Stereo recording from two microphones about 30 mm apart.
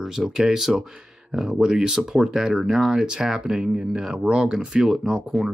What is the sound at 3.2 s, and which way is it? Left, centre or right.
Speech, centre.